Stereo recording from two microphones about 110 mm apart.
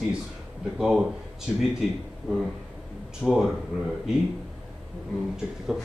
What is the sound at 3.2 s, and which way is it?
Speech, centre (ahead or behind).